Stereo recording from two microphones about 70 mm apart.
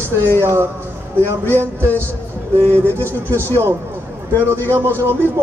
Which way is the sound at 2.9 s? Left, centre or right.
Left.